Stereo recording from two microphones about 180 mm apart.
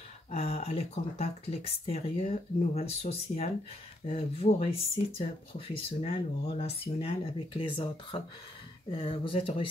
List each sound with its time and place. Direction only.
0.3 s speech: 40° left (ahead or behind)